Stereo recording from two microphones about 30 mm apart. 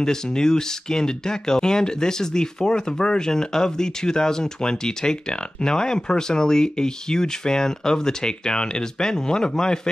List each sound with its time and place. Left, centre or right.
0.0 s speech: left